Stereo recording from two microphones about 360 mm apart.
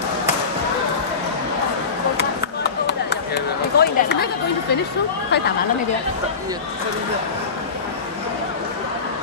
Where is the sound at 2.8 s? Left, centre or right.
Left.